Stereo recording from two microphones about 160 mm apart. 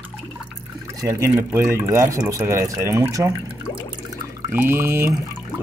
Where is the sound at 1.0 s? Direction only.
15° right (ahead or behind).